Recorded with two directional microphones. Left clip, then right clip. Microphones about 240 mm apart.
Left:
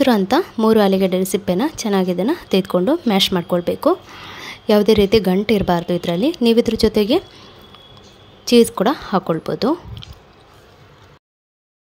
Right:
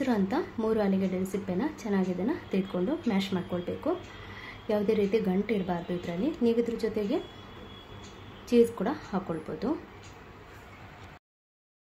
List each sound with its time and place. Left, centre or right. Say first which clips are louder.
0.0 s a woman's voice: left 14 dB; left
8.5 s a woman's voice: left 11 dB; left